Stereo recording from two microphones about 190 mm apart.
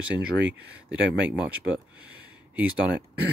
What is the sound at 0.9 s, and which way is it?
Speech, 5° right (ahead or behind).